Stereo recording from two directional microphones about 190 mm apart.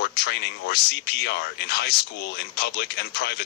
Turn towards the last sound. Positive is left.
turn(degrees=60)  # may be behind; listen again after turning